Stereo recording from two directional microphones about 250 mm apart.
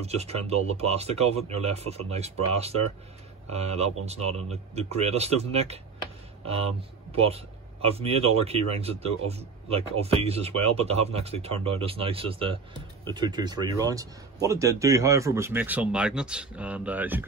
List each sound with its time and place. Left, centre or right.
0.0 s speech: right
7.1 s a man's voice: right; by 17.2 s centre